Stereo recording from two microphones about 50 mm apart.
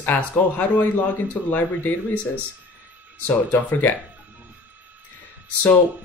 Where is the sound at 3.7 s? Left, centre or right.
Left.